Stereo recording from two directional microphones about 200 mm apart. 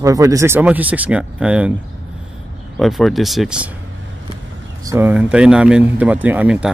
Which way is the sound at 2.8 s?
Centre (ahead or behind).